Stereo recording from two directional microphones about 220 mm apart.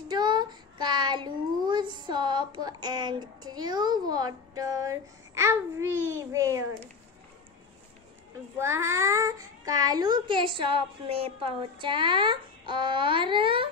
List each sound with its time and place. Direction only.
0.1 s a child's voice: 20° right (ahead or behind)
8.5 s a child's voice: 10° right (ahead or behind)